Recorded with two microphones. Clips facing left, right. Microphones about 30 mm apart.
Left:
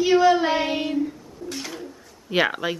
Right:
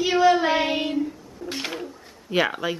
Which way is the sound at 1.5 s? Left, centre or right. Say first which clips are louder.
Right 3 dB; right.